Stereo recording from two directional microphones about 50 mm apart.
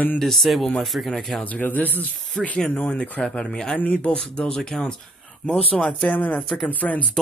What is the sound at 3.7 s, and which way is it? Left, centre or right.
Speech, left.